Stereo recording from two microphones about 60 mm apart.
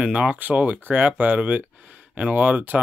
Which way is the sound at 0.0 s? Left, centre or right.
Centre.